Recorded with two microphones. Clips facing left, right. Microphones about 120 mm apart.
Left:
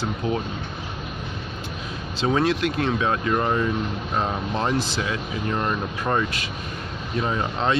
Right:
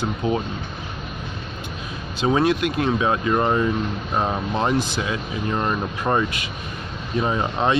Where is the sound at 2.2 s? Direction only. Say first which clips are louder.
Right 2 dB; 15° right (ahead or behind).